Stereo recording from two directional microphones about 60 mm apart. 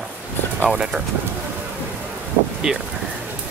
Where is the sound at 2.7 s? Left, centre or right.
Centre.